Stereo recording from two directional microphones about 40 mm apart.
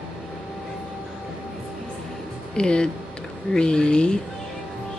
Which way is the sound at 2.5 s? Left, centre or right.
Left.